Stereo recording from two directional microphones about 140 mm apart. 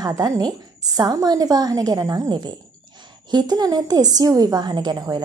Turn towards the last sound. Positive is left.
turn(degrees=-25)  # may be behind; listen again after turning